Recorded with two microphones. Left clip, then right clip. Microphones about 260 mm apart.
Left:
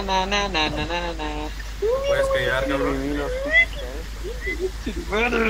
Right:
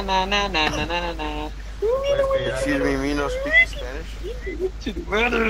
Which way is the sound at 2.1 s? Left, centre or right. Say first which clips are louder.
Even; left.